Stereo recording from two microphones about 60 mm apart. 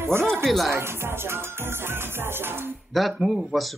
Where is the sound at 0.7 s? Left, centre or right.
Right.